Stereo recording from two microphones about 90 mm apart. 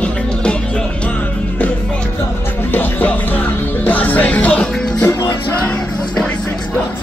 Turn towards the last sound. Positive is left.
turn(degrees=15)  # may be behind; listen again after turning